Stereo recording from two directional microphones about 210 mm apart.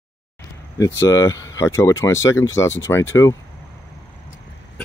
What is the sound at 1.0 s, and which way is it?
Speech, 15° left (ahead or behind).